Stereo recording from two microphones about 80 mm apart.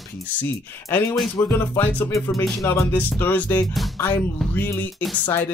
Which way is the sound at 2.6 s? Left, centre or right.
Left.